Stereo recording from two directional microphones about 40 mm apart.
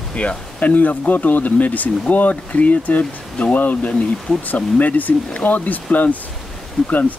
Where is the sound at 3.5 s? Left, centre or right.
Left.